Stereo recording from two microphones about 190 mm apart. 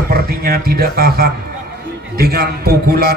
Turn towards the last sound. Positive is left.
turn(degrees=-55)  # may be behind; listen again after turning